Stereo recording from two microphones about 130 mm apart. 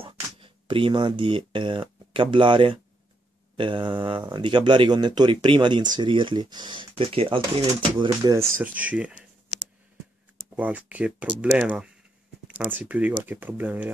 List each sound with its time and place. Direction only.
0.0 s speech: 45° right (ahead or behind)
8.0 s speech: 30° right (ahead or behind)
8.5 s speech: 10° right (ahead or behind)
10.5 s speech: 10° right (ahead or behind)